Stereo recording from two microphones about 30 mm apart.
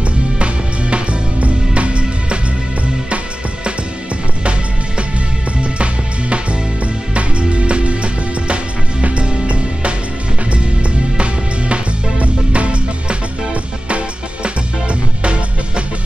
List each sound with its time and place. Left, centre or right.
0.4 s music: right
7.2 s music: right
11.7 s music: right